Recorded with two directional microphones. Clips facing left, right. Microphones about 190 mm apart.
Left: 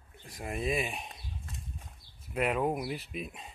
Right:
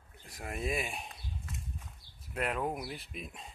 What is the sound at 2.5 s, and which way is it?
Speech, 10° left (ahead or behind).